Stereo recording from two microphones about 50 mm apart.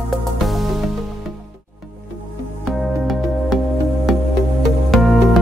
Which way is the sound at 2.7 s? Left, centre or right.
Centre.